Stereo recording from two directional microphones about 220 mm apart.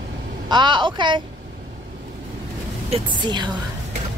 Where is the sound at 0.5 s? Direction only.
20° right (ahead or behind).